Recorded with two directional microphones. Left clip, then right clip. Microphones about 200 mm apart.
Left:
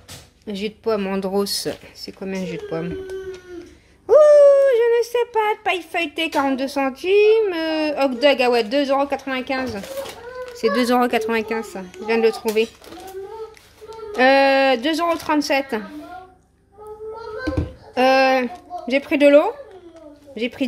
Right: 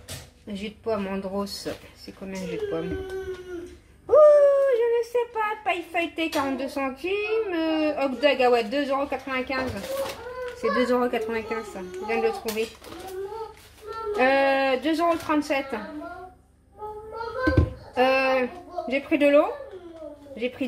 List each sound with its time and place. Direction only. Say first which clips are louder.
0.5 s speech: left 7 dB; 60° left (ahead or behind)
4.1 s speech: left 5 dB; 55° left (ahead or behind)
10.6 s speech: left 5 dB; 55° left (ahead or behind)
14.1 s speech: left 6 dB; 60° left (ahead or behind)
17.9 s a sound: left 6 dB; 60° left (ahead or behind)
20.3 s speech: left 4 dB; 60° left (ahead or behind)